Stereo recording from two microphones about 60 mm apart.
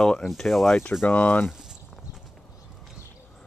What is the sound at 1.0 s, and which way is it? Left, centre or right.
Speech, left.